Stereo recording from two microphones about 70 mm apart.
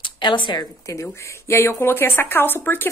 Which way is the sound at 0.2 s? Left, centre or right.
Left.